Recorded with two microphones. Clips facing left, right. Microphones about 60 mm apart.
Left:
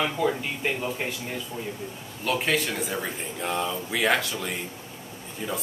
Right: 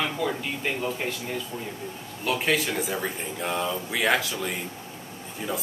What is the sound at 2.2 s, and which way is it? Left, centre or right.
Speech, centre.